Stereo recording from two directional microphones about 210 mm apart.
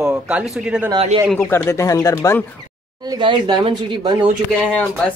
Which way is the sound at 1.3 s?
10° left (ahead or behind).